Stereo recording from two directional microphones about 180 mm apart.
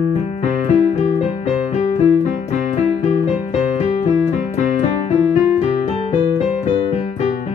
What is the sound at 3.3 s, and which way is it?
Music, 40° left (ahead or behind).